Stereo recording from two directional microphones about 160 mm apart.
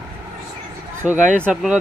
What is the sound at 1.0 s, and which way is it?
Speech, 5° right (ahead or behind).